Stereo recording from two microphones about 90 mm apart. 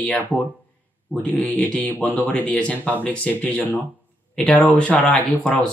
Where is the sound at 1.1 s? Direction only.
15° left (ahead or behind).